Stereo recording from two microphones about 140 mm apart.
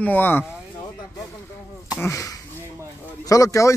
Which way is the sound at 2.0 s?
20° left (ahead or behind).